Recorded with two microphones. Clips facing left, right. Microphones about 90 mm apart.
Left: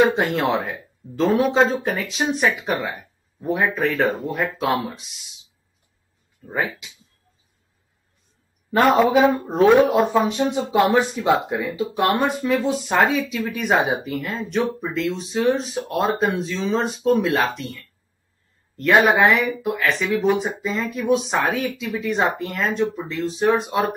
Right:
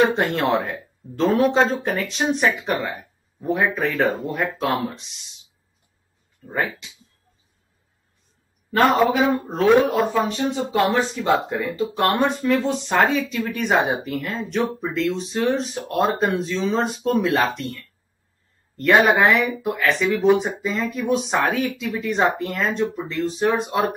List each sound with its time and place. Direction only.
0.1 s speech: centre (ahead or behind)
9.3 s a man's voice: 20° left (ahead or behind); by 23.9 s centre (ahead or behind)